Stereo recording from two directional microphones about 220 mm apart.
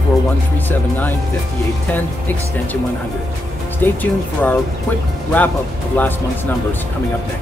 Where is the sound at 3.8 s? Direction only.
10° left (ahead or behind).